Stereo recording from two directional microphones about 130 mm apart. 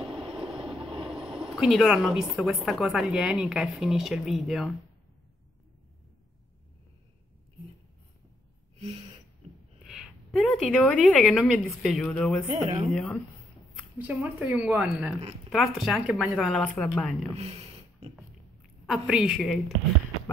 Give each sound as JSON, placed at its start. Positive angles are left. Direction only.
{"t": 0.1, "sound": "train", "side_deg": -5}
{"t": 1.1, "sound": "speech", "side_deg": -5}
{"t": 8.7, "sound": "gasp", "side_deg": -55}
{"t": 9.8, "sound": "speech", "side_deg": 0}
{"t": 12.6, "sound": "speech", "side_deg": -50}
{"t": 13.9, "sound": "a woman's voice", "side_deg": -15}
{"t": 18.9, "sound": "speech", "side_deg": -5}